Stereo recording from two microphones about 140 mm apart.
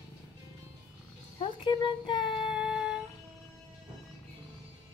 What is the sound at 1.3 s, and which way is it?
Speech, 35° left (ahead or behind).